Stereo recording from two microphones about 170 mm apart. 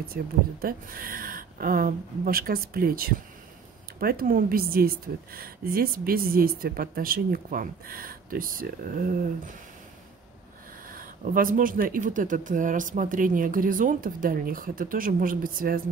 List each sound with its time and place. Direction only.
0.1 s speech: 60° right (ahead or behind)
10.9 s speech: 55° right (ahead or behind)